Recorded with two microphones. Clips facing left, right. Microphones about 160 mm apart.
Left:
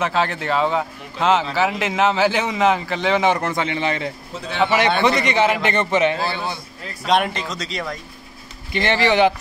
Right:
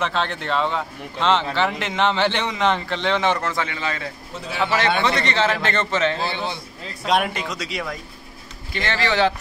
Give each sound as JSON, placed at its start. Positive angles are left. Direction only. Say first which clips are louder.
{"t": 0.0, "sound": "a man's voice", "louder": "left 3 dB", "side_deg": 5}
{"t": 7.1, "sound": "speech", "louder": "left 2 dB", "side_deg": -5}
{"t": 8.7, "sound": "a man's voice", "louder": "left 5 dB", "side_deg": 15}